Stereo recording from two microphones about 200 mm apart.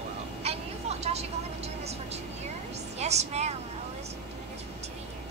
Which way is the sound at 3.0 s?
35° right (ahead or behind).